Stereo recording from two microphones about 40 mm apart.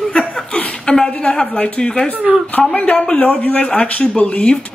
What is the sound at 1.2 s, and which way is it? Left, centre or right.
Speech, left.